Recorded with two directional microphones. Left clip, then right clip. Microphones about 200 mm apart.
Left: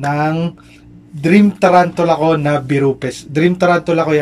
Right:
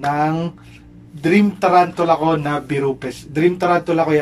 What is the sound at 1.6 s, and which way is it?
Speech, 15° left (ahead or behind).